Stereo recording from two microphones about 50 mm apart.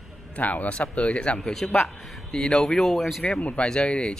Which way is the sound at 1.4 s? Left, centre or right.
Centre.